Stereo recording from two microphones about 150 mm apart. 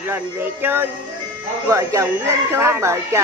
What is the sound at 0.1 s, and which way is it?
A woman's voice, 15° right (ahead or behind).